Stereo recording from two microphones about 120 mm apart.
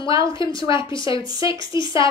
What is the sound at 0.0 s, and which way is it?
Speech, 25° right (ahead or behind).